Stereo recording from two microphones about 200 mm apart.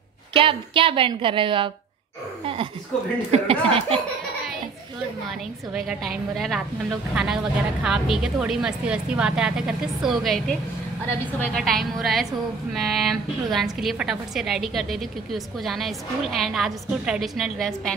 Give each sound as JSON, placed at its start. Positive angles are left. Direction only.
{"t": 0.3, "sound": "a woman's voice", "side_deg": -25}
{"t": 2.4, "sound": "a sound", "side_deg": -25}
{"t": 3.3, "sound": "a woman's voice", "side_deg": -30}
{"t": 5.7, "sound": "a woman's voice", "side_deg": 0}